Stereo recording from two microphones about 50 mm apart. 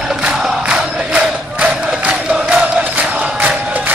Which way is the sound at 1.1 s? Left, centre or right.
Right.